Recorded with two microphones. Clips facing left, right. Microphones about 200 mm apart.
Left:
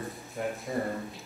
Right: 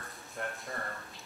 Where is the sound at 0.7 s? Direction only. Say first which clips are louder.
Left 10 dB; 15° left (ahead or behind).